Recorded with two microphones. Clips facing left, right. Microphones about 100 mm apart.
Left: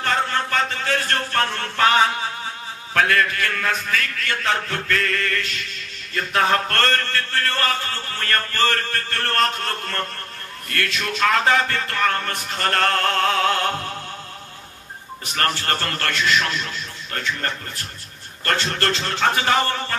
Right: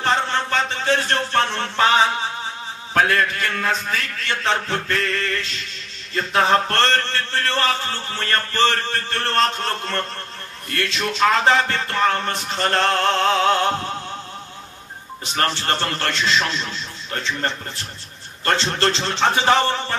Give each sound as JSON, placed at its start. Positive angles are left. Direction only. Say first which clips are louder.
{"t": 0.0, "sound": "a sound", "louder": "right 1 dB", "side_deg": -25}
{"t": 2.9, "sound": "music", "louder": "right 1 dB", "side_deg": -25}
{"t": 15.3, "sound": "music", "louder": "right 1 dB", "side_deg": -25}